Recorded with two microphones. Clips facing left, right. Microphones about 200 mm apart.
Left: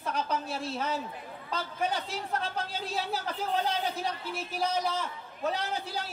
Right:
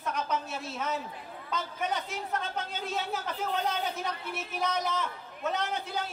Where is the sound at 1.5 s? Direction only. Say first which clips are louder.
Left 1 dB; 30° left (ahead or behind).